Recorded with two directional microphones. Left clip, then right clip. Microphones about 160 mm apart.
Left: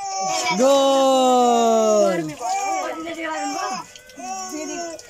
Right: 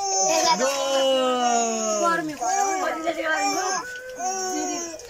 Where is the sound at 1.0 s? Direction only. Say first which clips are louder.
Left 5 dB; 30° left (ahead or behind).